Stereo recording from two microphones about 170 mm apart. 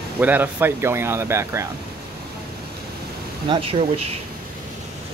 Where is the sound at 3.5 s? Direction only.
35° right (ahead or behind).